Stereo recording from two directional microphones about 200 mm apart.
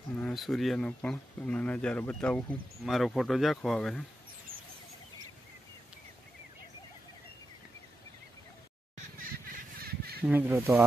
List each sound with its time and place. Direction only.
0.1 s speech: centre (ahead or behind)
9.8 s a sound: 50° right (ahead or behind)
10.2 s speech: 10° right (ahead or behind)